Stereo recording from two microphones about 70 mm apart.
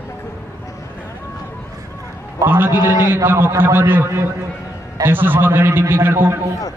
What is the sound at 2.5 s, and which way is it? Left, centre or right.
A man's voice, right.